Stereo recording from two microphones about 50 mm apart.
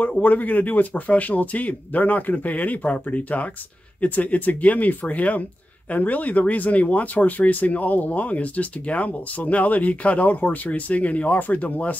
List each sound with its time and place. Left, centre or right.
0.2 s speech: left